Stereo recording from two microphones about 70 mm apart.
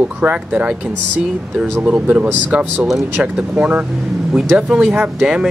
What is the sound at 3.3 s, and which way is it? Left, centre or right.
Speech, right.